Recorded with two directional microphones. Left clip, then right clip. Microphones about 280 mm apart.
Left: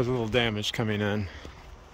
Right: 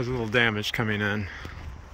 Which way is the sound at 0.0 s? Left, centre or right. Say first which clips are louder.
Right 2 dB; centre.